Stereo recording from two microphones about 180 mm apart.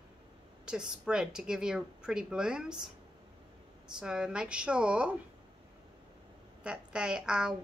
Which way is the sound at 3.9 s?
5° right (ahead or behind).